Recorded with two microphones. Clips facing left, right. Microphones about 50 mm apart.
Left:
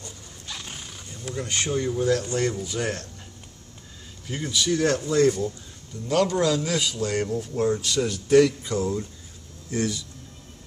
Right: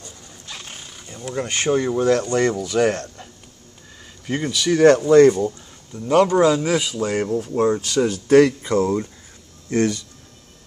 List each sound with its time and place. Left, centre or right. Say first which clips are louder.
0.5 s horse: right 1 dB; centre
0.7 s wild animals: right 1 dB; centre
1.1 s speech: right 5 dB; right
4.3 s speech: right 5 dB; right
5.0 s speech: right 8 dB; right
5.9 s a man's voice: right 7 dB; right